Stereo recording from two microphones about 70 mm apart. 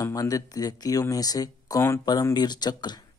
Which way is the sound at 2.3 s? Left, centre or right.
Left.